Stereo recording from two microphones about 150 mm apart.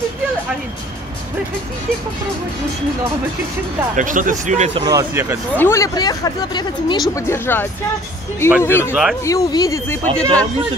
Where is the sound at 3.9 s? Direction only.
60° right (ahead or behind).